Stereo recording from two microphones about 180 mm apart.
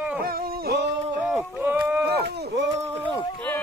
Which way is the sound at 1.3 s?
10° right (ahead or behind).